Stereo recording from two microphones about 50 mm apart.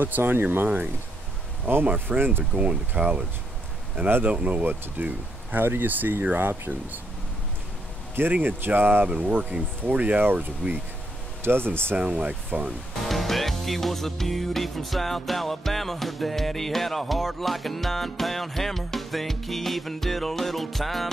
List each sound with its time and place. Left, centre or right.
0.0 s speech: right
1.9 s speech: right
2.5 s speech: right
2.9 s speech: right
4.2 s speech: right
4.6 s speech: right
8.2 s speech: right
11.4 s speech: right
12.0 s speech: right
13.0 s music: centre